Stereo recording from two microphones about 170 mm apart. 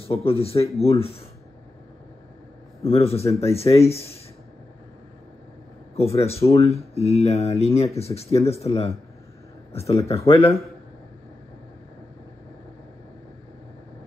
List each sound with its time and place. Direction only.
0.0 s speech: 35° left (ahead or behind)
2.8 s speech: 35° left (ahead or behind)
5.9 s speech: 35° left (ahead or behind)